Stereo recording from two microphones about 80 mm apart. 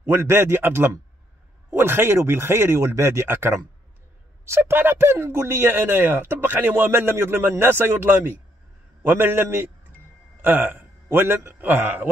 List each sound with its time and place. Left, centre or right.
0.1 s a man's voice: right